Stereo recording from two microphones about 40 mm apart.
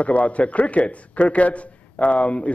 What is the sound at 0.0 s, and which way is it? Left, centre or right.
A man's voice, left.